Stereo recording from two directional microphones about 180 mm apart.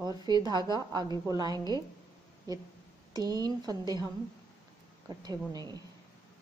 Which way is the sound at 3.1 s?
20° right (ahead or behind).